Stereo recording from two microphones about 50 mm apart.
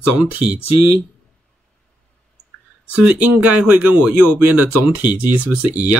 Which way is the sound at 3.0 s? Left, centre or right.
Right.